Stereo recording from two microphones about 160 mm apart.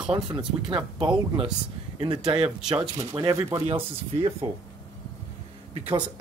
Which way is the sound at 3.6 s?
35° right (ahead or behind).